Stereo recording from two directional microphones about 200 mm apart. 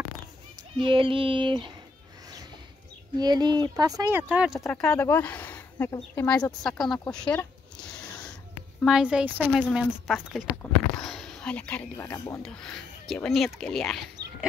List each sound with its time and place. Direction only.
0.7 s a child's voice: 25° right (ahead or behind)
3.2 s speech: 20° right (ahead or behind); by 6.4 s 5° left (ahead or behind)
6.6 s a sound: centre (ahead or behind)
8.8 s speech: 5° right (ahead or behind)